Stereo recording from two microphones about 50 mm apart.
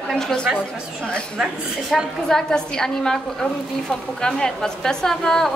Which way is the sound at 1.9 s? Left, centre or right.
Centre.